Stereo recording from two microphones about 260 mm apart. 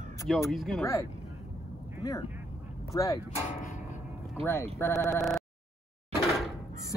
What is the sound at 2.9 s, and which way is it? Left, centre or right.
Speech, centre.